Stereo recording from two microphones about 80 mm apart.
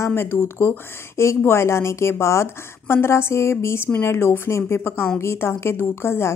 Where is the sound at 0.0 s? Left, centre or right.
Left.